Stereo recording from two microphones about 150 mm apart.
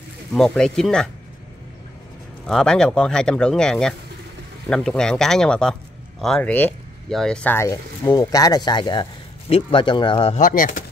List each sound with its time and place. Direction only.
0.3 s speech: 5° left (ahead or behind)
2.4 s speech: 5° left (ahead or behind); by 10.3 s 35° left (ahead or behind)
10.3 s speech: 65° left (ahead or behind)